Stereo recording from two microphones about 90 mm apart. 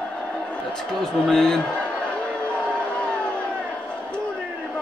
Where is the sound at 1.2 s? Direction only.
10° left (ahead or behind).